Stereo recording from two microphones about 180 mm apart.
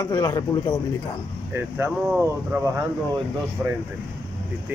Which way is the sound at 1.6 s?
10° right (ahead or behind).